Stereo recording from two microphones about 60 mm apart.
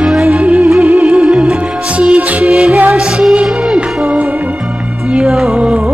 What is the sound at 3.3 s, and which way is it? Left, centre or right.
Music, centre.